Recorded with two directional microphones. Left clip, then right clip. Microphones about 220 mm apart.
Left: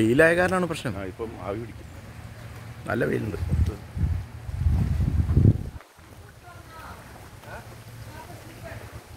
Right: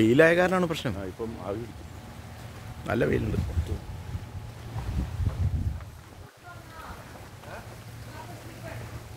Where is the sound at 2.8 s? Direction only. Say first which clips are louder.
Even; centre (ahead or behind).